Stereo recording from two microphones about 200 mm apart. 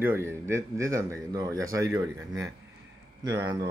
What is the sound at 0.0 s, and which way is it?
Speech, 10° right (ahead or behind).